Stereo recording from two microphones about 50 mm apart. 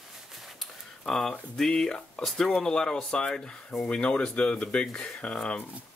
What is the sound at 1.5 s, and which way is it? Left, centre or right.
Speech, centre.